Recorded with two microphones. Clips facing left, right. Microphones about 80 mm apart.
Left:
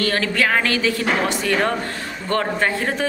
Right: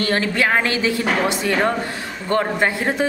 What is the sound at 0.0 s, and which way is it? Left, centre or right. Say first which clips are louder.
A woman's voice: right 1 dB; right.